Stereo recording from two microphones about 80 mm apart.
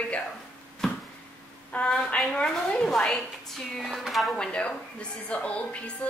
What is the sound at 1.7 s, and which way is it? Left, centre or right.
A woman's voice, centre.